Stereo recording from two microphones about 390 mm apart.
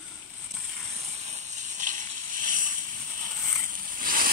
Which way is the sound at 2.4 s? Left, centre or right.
Centre.